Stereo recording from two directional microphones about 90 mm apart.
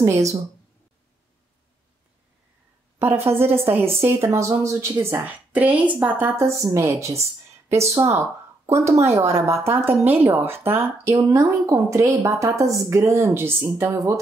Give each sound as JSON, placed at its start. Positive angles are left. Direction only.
{"t": 0.0, "sound": "speech", "side_deg": -35}
{"t": 3.3, "sound": "a woman's voice", "side_deg": -90}
{"t": 3.6, "sound": "a woman's voice", "side_deg": -25}
{"t": 5.2, "sound": "a woman's voice", "side_deg": -20}
{"t": 6.3, "sound": "a woman's voice", "side_deg": -35}